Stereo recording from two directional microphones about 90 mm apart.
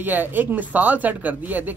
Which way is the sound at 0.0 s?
20° right (ahead or behind).